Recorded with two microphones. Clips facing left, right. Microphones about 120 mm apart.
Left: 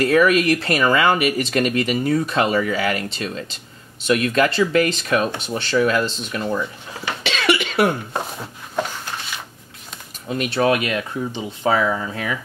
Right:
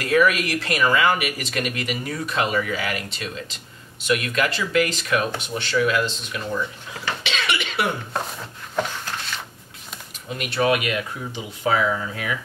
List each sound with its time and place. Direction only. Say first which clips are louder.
0.0 s speech: left 4 dB; 35° left (ahead or behind)
7.2 s cough: left 8 dB; 40° left (ahead or behind)
8.1 s a sound: left 2 dB; 5° left (ahead or behind)
10.3 s speech: left 3 dB; 35° left (ahead or behind)